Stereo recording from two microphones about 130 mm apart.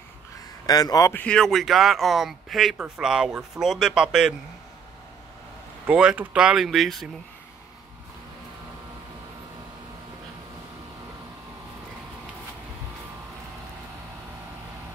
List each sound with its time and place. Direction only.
0.7 s a man's voice: 30° left (ahead or behind)
1.1 s speech: 10° left (ahead or behind)
5.9 s speech: 10° right (ahead or behind)